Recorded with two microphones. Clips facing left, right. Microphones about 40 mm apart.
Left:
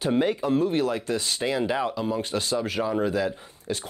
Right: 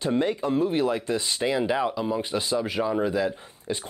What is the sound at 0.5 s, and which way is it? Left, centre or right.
Speech, centre.